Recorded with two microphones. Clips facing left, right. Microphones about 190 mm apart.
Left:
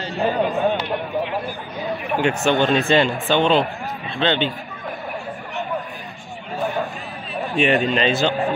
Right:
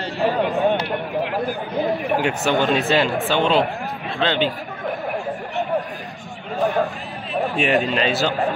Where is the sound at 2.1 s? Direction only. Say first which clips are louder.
Left 4 dB; 5° right (ahead or behind).